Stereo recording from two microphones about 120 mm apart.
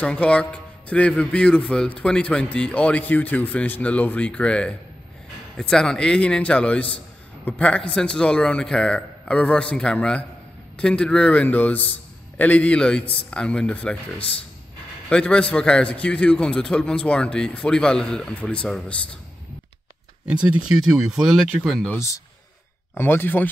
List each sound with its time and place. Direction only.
0.0 s a man's voice: 10° left (ahead or behind)
20.2 s speech: 5° right (ahead or behind)
22.9 s a man's voice: 20° left (ahead or behind)